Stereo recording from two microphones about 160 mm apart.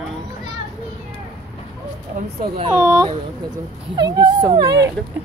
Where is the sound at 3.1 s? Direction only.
25° right (ahead or behind).